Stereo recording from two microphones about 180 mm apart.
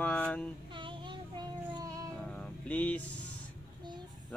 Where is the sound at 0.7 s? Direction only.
25° right (ahead or behind).